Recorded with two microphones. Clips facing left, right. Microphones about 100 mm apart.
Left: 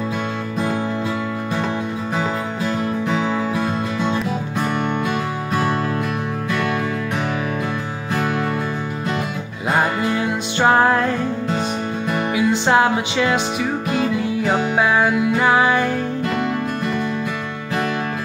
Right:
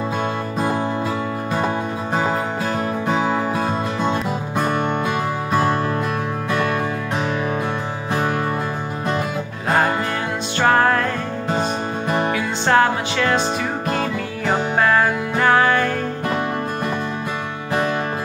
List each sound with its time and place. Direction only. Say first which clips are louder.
2.1 s music: right 3 dB; 45° right (ahead or behind)
10.6 s music: left 1 dB; 15° left (ahead or behind)
12.4 s music: left 2 dB; 15° left (ahead or behind)